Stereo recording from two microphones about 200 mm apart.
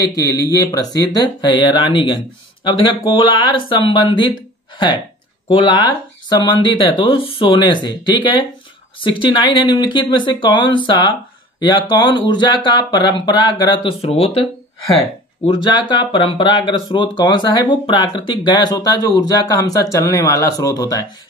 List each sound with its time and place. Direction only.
0.0 s speech: 20° left (ahead or behind)
5.5 s speech: 25° left (ahead or behind)
15.4 s speech: 25° left (ahead or behind)